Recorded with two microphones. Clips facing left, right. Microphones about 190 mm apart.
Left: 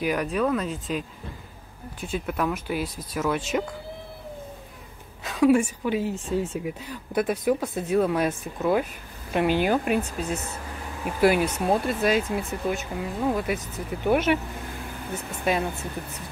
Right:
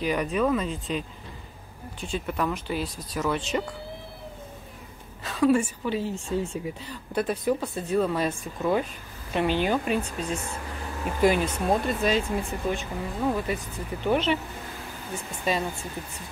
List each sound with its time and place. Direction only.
0.0 s speech: centre (ahead or behind)
5.2 s speech: 10° left (ahead or behind)
15.4 s speech: 60° left (ahead or behind)